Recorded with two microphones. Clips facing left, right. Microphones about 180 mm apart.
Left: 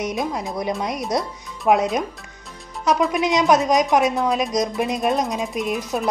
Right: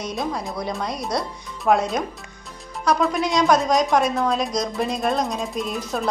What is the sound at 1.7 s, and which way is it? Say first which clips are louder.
Speech: left 1 dB; 10° left (ahead or behind).